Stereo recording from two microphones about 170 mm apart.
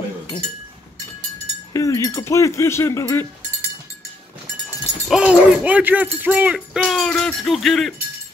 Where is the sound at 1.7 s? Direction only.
20° left (ahead or behind).